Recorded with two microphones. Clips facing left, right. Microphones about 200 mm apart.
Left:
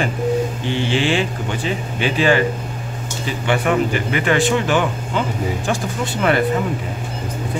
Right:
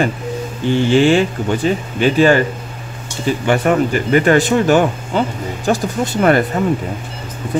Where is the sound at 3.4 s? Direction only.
45° right (ahead or behind).